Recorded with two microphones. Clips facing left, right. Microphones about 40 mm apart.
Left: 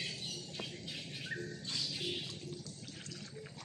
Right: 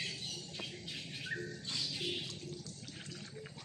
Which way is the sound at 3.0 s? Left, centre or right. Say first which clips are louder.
Right 1 dB; right.